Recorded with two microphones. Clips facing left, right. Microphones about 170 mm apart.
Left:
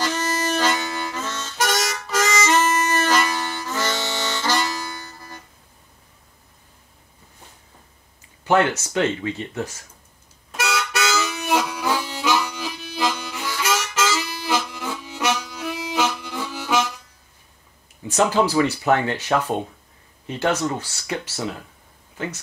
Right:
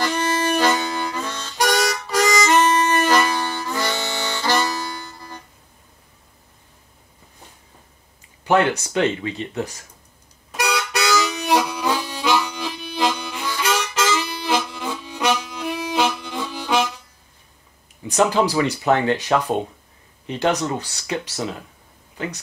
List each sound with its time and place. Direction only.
0.0 s harmonica: 15° right (ahead or behind)
8.5 s speech: 15° right (ahead or behind)
10.5 s harmonica: 15° right (ahead or behind)
12.7 s music: 20° right (ahead or behind)
13.6 s harmonica: 15° right (ahead or behind)
14.1 s music: 15° right (ahead or behind)
16.3 s harmonica: 20° right (ahead or behind)
18.0 s speech: 15° right (ahead or behind)